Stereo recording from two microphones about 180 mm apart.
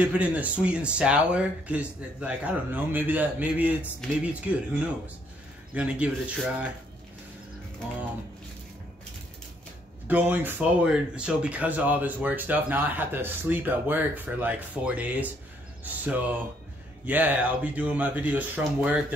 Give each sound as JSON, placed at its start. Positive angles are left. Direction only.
{"t": 0.0, "sound": "speech", "side_deg": -10}
{"t": 5.8, "sound": "speech", "side_deg": -5}
{"t": 10.0, "sound": "speech", "side_deg": -10}